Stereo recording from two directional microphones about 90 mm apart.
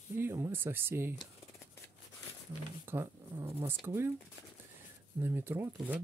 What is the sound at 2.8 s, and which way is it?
Speech, 30° right (ahead or behind).